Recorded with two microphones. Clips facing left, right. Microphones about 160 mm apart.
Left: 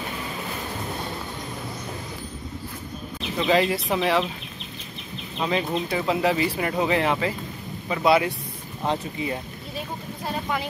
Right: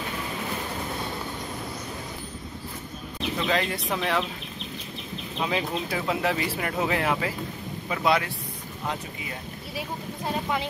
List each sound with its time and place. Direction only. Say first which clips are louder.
3.4 s speech: left 7 dB; 5° left (ahead or behind)
5.4 s speech: left 3 dB; 5° right (ahead or behind)
10.2 s speech: even; 20° right (ahead or behind)